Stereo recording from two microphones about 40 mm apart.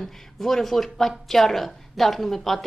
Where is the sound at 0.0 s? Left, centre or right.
Centre.